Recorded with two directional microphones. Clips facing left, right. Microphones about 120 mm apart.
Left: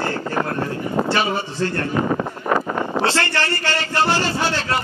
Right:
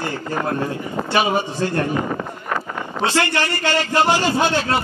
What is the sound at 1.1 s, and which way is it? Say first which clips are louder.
Speech: right 2 dB; 15° right (ahead or behind).